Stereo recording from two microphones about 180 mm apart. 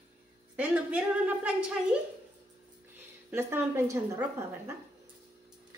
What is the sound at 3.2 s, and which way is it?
A woman's voice, 15° right (ahead or behind).